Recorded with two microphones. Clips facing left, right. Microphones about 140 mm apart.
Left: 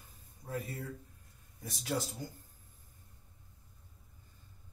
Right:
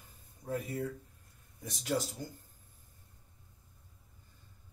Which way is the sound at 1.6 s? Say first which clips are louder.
Right 2 dB; 10° left (ahead or behind).